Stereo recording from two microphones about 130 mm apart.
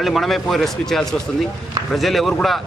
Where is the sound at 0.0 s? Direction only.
Centre (ahead or behind).